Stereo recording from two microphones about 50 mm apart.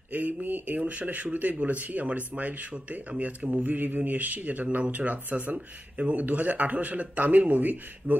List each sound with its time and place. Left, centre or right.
0.1 s speech: right